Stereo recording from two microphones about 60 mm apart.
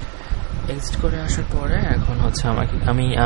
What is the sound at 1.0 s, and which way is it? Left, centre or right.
A man's voice, centre.